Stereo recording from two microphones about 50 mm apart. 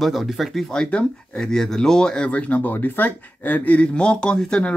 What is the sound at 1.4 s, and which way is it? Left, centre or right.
Speech, centre.